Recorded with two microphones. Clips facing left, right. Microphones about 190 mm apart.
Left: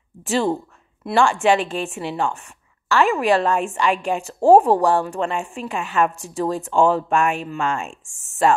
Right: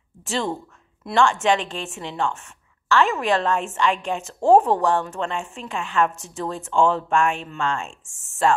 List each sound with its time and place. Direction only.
0.2 s speech: 15° left (ahead or behind)